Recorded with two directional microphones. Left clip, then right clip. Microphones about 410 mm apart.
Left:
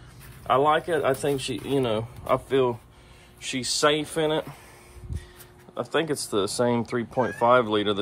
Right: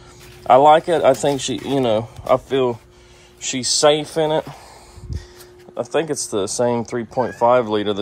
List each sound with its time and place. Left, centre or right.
0.5 s speech: centre
5.8 s speech: centre